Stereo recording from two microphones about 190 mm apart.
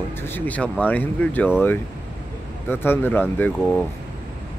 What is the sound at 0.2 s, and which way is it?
Speech, 10° left (ahead or behind).